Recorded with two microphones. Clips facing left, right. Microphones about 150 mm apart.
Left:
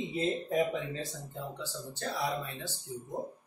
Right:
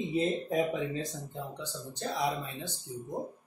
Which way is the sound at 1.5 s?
20° right (ahead or behind).